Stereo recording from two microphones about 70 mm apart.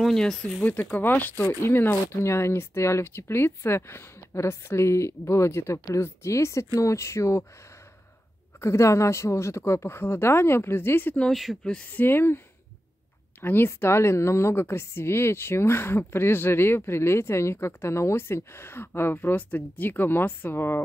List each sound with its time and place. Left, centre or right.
0.0 s speech: centre
0.7 s a woman's voice: left
8.5 s a woman's voice: left
11.6 s speech: centre
11.9 s a woman's voice: left
13.4 s a woman's voice: left